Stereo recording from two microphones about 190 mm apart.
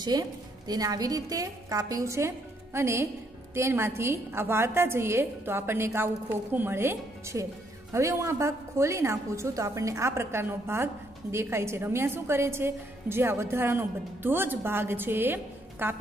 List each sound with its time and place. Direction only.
0.0 s a woman's voice: 20° right (ahead or behind)